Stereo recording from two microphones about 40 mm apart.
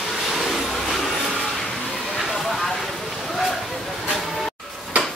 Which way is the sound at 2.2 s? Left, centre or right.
Centre.